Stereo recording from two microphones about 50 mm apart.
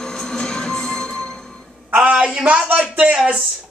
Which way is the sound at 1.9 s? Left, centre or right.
Right.